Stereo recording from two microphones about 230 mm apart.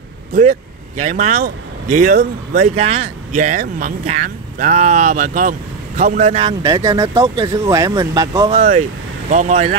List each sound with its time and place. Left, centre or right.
0.3 s speech: right
6.6 s speech: centre
8.5 s speech: right